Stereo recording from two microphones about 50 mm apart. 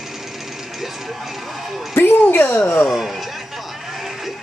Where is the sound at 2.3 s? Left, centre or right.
Left.